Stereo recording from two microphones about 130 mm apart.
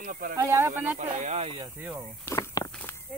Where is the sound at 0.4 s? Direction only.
20° right (ahead or behind).